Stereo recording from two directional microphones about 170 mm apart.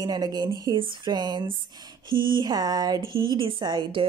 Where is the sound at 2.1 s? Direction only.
55° right (ahead or behind).